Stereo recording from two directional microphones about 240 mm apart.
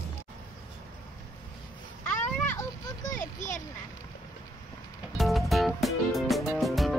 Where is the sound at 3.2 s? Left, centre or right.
Left.